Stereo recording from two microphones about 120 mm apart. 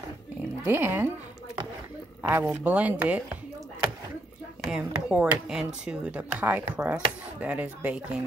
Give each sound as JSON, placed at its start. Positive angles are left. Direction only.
{"t": 0.7, "sound": "a woman's voice", "side_deg": -20}
{"t": 4.6, "sound": "speech", "side_deg": -5}